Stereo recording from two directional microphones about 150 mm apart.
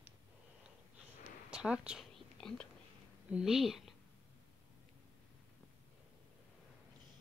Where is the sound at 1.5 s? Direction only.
5° right (ahead or behind).